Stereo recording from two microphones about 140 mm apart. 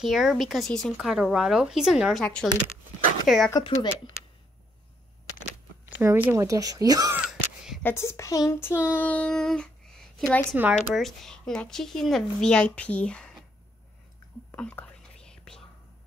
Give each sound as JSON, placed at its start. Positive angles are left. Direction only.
{"t": 0.0, "sound": "speech", "side_deg": 0}
{"t": 5.9, "sound": "a woman's voice", "side_deg": -15}
{"t": 7.2, "sound": "a sound", "side_deg": -5}
{"t": 7.8, "sound": "child singing", "side_deg": 20}
{"t": 10.5, "sound": "speech", "side_deg": -10}
{"t": 14.5, "sound": "whispering", "side_deg": 10}